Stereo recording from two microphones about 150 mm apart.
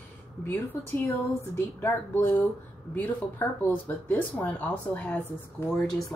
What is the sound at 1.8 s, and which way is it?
Speech, 15° left (ahead or behind).